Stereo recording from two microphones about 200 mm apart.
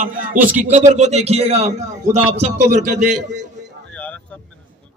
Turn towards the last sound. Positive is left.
turn(degrees=-35)  # may be behind; listen again after turning